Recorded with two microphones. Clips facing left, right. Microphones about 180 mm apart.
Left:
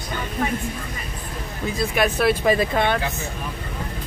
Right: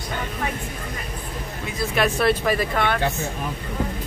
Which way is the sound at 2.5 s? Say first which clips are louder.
Left 3 dB; 20° left (ahead or behind).